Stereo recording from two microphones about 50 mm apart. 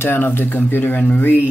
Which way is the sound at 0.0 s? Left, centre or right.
Left.